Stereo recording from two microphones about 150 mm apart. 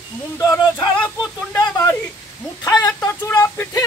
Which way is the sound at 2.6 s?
20° left (ahead or behind).